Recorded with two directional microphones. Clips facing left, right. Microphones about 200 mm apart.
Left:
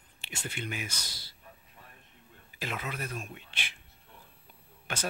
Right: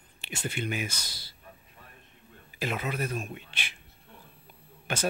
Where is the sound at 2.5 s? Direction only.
15° right (ahead or behind).